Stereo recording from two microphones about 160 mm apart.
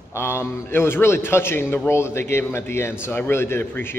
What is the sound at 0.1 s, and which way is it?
A man's voice, 15° left (ahead or behind).